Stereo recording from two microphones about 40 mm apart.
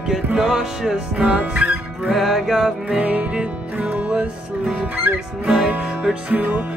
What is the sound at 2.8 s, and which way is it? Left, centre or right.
Music, right.